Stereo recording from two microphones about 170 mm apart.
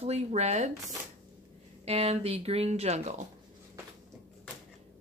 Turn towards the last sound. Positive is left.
turn(degrees=-40)  # may be behind; listen again after turning